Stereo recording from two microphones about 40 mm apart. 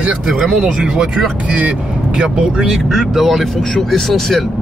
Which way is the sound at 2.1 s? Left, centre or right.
Right.